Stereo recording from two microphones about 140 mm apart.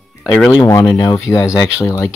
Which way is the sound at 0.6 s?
20° left (ahead or behind).